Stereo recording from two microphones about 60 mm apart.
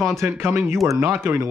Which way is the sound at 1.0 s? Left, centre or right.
Right.